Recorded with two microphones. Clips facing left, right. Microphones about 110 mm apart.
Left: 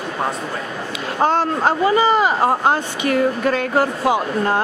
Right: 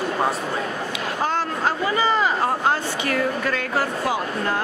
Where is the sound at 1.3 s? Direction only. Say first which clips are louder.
Left 6 dB; 25° left (ahead or behind).